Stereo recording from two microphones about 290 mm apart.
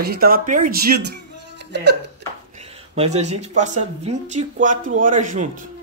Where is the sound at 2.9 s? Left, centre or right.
Right.